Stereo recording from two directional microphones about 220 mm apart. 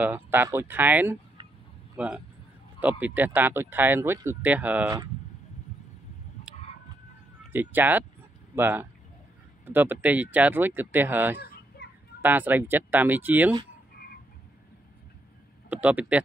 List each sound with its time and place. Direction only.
0.0 s speech: 10° right (ahead or behind)
7.5 s speech: 10° right (ahead or behind)
11.8 s children playing: 50° left (ahead or behind)
12.2 s speech: 10° right (ahead or behind)
15.7 s speech: 5° right (ahead or behind)